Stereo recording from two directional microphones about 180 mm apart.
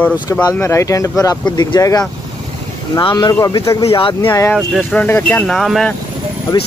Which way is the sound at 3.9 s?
30° left (ahead or behind).